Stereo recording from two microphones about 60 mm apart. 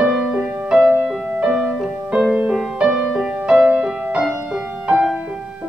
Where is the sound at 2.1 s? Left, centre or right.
Centre.